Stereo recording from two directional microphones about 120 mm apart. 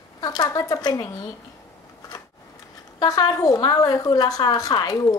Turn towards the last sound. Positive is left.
turn(degrees=30)  # may be behind; listen again after turning